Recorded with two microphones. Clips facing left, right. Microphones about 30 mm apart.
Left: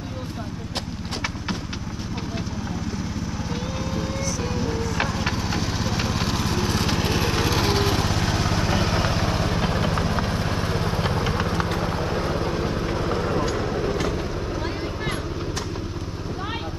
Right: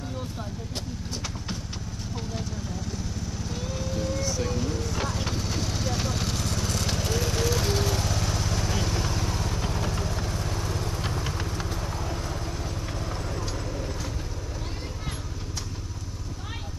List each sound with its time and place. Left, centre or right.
3.9 s vehicle: left
4.4 s music: left
5.3 s lawn mower: left